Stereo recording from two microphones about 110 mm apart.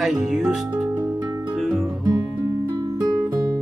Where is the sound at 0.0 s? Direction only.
5° right (ahead or behind).